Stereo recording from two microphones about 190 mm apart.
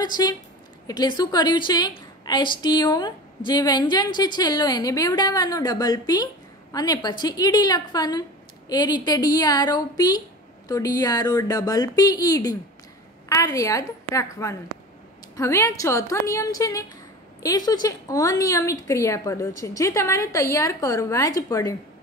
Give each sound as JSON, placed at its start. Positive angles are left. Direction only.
{"t": 0.0, "sound": "a woman's voice", "side_deg": 20}